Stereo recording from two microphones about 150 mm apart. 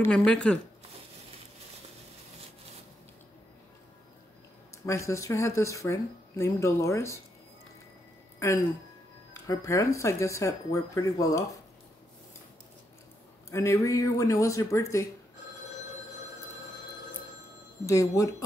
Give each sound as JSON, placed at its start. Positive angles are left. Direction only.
{"t": 0.0, "sound": "speech", "side_deg": 5}
{"t": 4.8, "sound": "speech", "side_deg": 20}
{"t": 8.4, "sound": "speech", "side_deg": 20}
{"t": 13.5, "sound": "speech", "side_deg": 20}
{"t": 17.8, "sound": "speech", "side_deg": 20}